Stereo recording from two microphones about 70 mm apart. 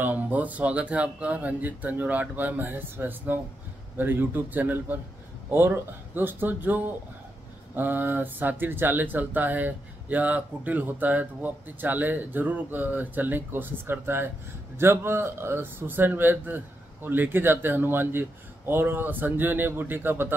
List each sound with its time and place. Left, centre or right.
0.0 s speech: right
6.1 s a man's voice: right